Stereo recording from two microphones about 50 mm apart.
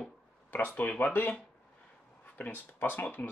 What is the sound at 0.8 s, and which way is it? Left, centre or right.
Speech, left.